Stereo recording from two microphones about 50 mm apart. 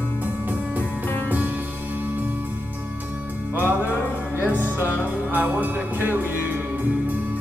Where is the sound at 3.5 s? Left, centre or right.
Right.